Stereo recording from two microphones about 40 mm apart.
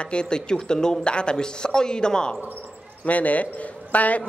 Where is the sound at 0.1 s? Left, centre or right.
Left.